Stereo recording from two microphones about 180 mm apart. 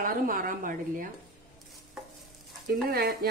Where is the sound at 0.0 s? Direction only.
50° right (ahead or behind).